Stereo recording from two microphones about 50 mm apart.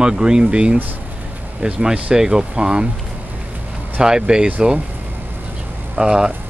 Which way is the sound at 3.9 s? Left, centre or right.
Centre.